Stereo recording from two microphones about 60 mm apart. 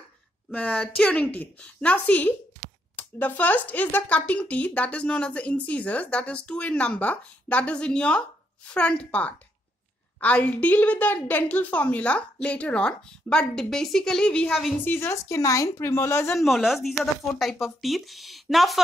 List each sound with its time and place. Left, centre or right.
0.5 s speech: left
14.9 s speech: left
15.8 s a woman's voice: left
16.3 s speech: centre